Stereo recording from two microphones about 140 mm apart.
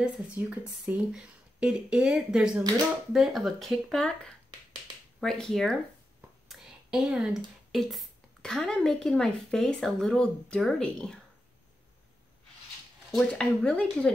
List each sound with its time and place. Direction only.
0.0 s speech: 10° right (ahead or behind)
6.5 s a sound: 5° right (ahead or behind)
7.7 s speech: centre (ahead or behind)
13.3 s speech: 5° left (ahead or behind)